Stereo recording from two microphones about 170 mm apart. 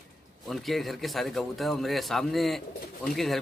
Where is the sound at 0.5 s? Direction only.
Centre (ahead or behind).